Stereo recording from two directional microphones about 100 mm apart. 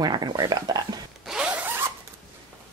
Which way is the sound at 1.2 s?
5° right (ahead or behind).